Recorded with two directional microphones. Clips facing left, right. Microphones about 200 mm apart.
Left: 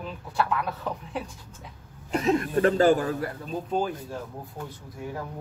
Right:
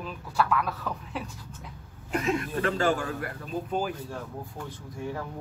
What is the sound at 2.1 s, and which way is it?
Speech, 40° left (ahead or behind).